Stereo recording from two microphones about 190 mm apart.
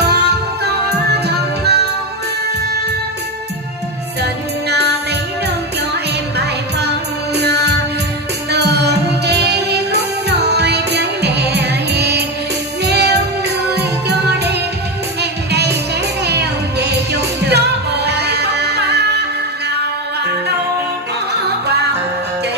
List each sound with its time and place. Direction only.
0.0 s music: 60° right (ahead or behind)
4.2 s music: 60° right (ahead or behind)
7.3 s music: 60° right (ahead or behind)